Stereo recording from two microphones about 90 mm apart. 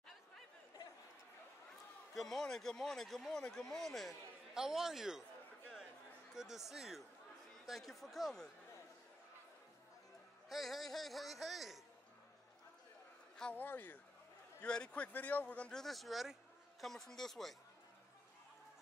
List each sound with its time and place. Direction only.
2.1 s a man's voice: 5° left (ahead or behind)
6.3 s a man's voice: 5° right (ahead or behind)
10.5 s a man's voice: centre (ahead or behind)
13.6 s speech: 20° left (ahead or behind)
14.6 s speech: 10° left (ahead or behind)
15.8 s a man's voice: centre (ahead or behind)